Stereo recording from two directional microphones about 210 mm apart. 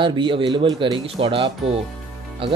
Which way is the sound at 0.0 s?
20° right (ahead or behind).